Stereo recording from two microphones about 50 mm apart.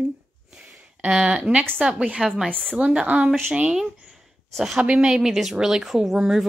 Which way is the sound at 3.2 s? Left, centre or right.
Centre.